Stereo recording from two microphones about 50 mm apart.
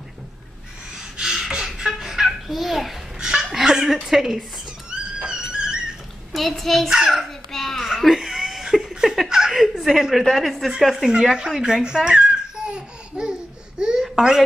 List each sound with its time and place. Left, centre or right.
1.1 s a sound: centre
3.2 s laughter: centre
4.1 s speech: centre
5.2 s music: centre
6.3 s a child's voice: centre
7.1 s babbling: centre
8.2 s laughter: centre
9.6 s a child's voice: centre
11.6 s laughter: centre
13.7 s babbling: centre
14.0 s a sound: centre